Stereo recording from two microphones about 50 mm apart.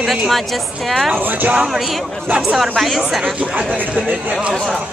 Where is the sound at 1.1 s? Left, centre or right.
Right.